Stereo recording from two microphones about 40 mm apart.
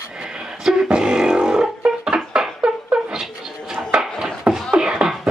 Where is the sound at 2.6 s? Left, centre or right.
Right.